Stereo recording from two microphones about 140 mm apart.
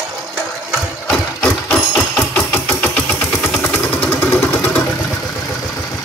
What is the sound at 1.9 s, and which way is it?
Engine, 10° left (ahead or behind).